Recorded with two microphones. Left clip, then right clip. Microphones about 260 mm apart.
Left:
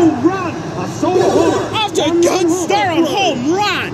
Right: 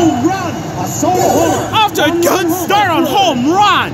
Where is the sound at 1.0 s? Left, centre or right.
Right.